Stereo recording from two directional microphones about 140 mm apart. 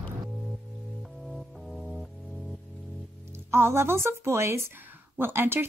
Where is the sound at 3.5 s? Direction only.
15° right (ahead or behind).